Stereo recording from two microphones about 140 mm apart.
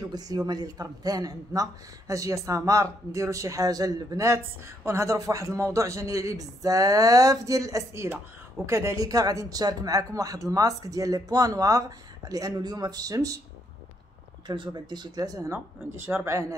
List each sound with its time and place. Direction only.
0.1 s speech: 25° right (ahead or behind)
14.5 s speech: 35° right (ahead or behind)